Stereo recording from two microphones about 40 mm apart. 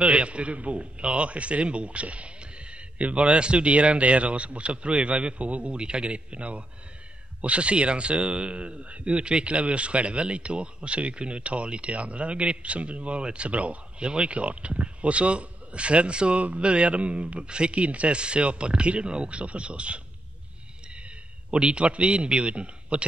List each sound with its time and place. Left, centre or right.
0.0 s a man's voice: right
21.5 s a man's voice: right